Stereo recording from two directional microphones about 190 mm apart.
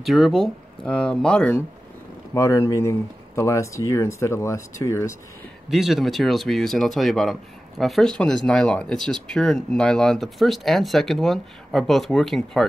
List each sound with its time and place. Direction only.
0.0 s speech: centre (ahead or behind); by 5.1 s 15° left (ahead or behind)
5.7 s speech: centre (ahead or behind)